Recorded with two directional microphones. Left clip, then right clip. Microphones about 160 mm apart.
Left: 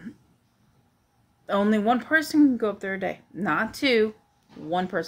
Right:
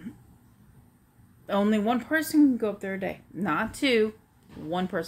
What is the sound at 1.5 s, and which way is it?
Speech, 10° left (ahead or behind).